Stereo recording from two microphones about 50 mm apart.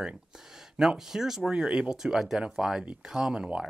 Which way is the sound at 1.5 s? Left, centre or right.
Right.